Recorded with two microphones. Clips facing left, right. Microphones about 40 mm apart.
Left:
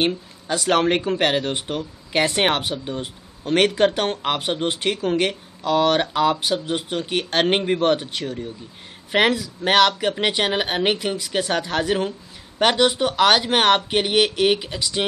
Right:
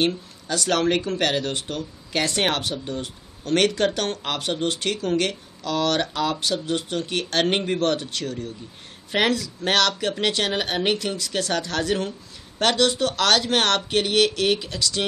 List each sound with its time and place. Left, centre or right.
0.0 s speech: left